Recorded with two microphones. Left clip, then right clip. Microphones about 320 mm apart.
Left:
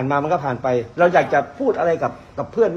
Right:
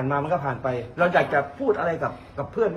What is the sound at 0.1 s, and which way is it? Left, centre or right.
A man's voice, left.